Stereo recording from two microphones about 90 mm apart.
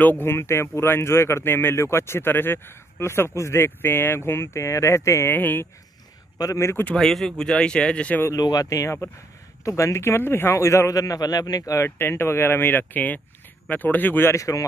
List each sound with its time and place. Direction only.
0.0 s speech: 20° left (ahead or behind)
5.3 s speech: 20° left (ahead or behind)
6.3 s speech: 40° left (ahead or behind)
7.0 s speech: 5° left (ahead or behind)
8.4 s a man's voice: 45° left (ahead or behind); by 14.3 s 20° left (ahead or behind)
14.3 s a man's voice: 40° left (ahead or behind)